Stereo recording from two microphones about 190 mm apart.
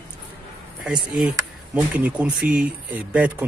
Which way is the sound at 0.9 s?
5° right (ahead or behind).